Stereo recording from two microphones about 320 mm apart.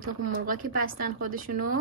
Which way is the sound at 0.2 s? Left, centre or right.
Right.